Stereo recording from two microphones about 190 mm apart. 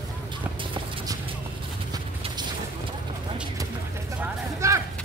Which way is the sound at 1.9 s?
20° right (ahead or behind).